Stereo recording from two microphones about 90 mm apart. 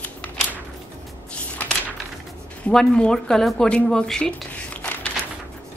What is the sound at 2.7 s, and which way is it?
A woman's voice, 10° left (ahead or behind).